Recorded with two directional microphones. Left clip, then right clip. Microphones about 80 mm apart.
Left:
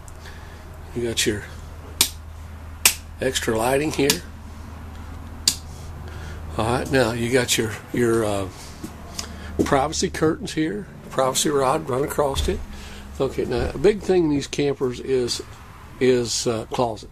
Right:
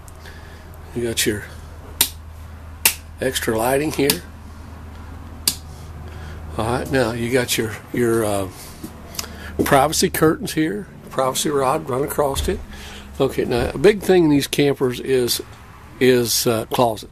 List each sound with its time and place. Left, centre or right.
0.9 s speech: centre
3.2 s speech: centre
6.2 s speech: centre
8.2 s speech: centre
9.1 s speech: right
11.1 s speech: centre
12.3 s speech: right
12.7 s speech: right